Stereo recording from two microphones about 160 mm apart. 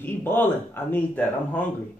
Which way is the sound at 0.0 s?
10° left (ahead or behind).